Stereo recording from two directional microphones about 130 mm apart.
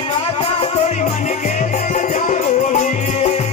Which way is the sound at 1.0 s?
70° left (ahead or behind).